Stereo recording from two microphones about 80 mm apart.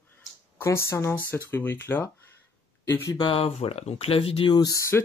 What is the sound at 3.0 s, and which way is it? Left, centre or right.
Speech, left.